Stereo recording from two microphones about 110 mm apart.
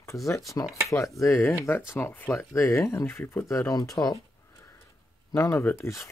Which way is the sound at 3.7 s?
35° left (ahead or behind).